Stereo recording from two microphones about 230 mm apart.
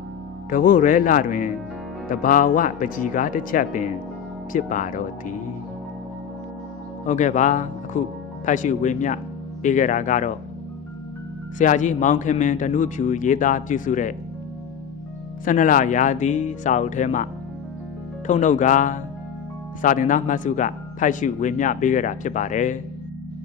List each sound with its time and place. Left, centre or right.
0.5 s speech: left
7.1 s speech: left
11.5 s speech: left
15.4 s speech: left